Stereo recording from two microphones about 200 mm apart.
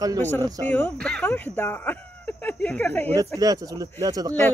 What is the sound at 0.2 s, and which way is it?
Speech, 10° left (ahead or behind).